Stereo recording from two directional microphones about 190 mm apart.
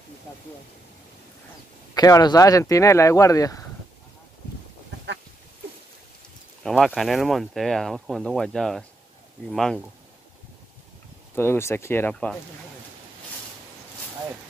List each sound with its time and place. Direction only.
2.0 s speech: 20° left (ahead or behind)
6.6 s speech: centre (ahead or behind)
11.3 s speech: 10° left (ahead or behind)